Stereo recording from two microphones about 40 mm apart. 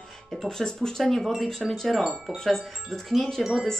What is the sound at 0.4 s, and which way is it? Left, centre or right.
Speech, centre.